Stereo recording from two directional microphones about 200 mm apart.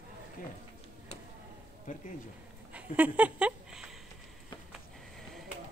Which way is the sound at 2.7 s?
5° right (ahead or behind).